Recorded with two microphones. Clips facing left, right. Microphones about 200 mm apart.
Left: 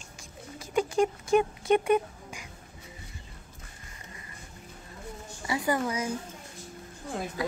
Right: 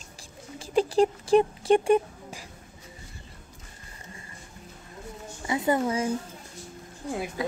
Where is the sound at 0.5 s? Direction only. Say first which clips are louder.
Right 4 dB; 30° right (ahead or behind).